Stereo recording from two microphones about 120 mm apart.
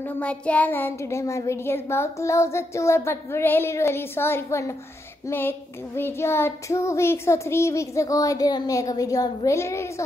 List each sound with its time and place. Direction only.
0.2 s child singing: 10° left (ahead or behind)